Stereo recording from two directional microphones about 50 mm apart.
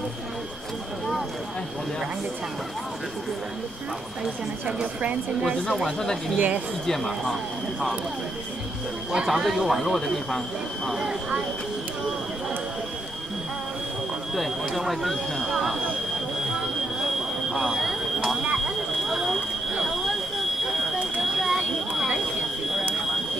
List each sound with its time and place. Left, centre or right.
5.9 s speech: centre
6.3 s speech: right
6.9 s speech: centre
9.1 s speech: centre
10.9 s speech: centre
14.3 s speech: centre
17.0 s a sound: centre